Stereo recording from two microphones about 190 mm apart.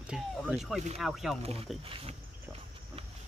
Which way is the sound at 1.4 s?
30° right (ahead or behind).